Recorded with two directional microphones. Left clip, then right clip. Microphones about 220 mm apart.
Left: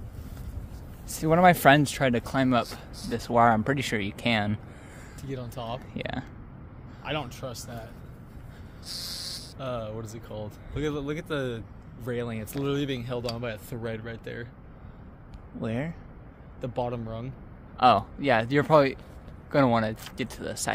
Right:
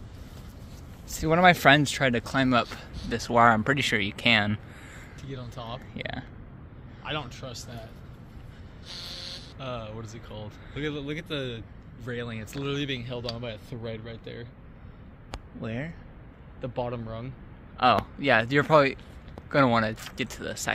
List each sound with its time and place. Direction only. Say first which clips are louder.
1.1 s speech: even; 15° left (ahead or behind)
5.2 s speech: left 4 dB; 65° left (ahead or behind)
5.9 s speech: right 1 dB; 20° left (ahead or behind)
7.0 s speech: left 1 dB; 60° left (ahead or behind)
8.8 s snort: left 2 dB; 5° left (ahead or behind)
9.6 s speech: left 3 dB; 60° left (ahead or behind); by 14.5 s 40° left (ahead or behind)
15.6 s speech: left 4 dB; 25° left (ahead or behind)
17.7 s a man's voice: left 2 dB; 15° left (ahead or behind)
18.2 s speech: right 1 dB; 5° left (ahead or behind)